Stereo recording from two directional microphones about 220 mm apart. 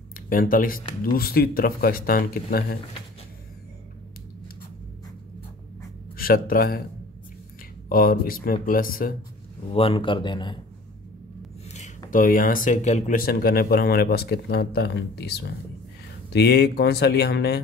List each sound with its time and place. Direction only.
0.1 s speech: 40° left (ahead or behind)
6.1 s speech: 40° left (ahead or behind)
7.9 s speech: 40° left (ahead or behind)
9.7 s speech: 25° left (ahead or behind)
11.7 s speech: 35° left (ahead or behind)
16.3 s speech: 45° left (ahead or behind)